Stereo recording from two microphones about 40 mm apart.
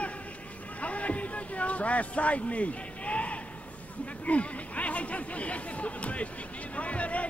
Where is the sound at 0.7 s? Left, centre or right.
Left.